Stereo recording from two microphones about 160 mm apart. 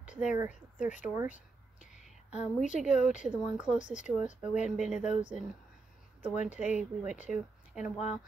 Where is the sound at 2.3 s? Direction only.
50° left (ahead or behind).